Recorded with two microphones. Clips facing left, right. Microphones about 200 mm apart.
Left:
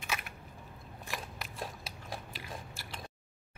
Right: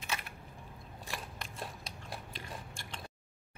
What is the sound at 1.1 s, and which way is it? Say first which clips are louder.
Biting: left 2 dB; 5° left (ahead or behind).